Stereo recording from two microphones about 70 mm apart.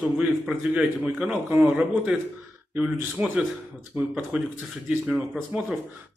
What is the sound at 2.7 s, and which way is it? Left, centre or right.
Speech, centre.